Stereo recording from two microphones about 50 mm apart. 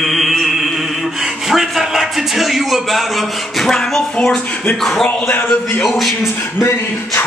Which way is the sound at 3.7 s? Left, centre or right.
Centre.